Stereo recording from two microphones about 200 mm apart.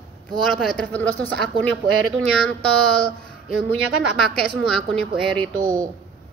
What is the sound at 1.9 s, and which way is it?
Speech, 90° right.